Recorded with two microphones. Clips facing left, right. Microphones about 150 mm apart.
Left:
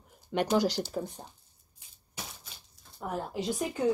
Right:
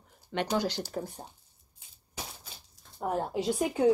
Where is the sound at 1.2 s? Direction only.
10° right (ahead or behind).